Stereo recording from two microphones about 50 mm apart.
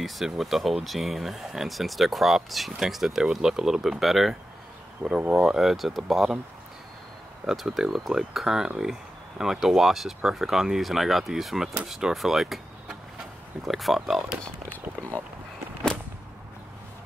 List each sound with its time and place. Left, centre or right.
0.0 s speech: centre
5.0 s speech: right
5.4 s speech: centre
7.4 s speech: centre